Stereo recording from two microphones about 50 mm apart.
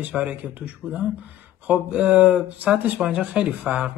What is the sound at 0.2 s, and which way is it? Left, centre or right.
Speech, right.